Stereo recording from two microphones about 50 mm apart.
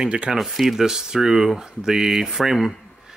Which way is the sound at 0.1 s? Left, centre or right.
Right.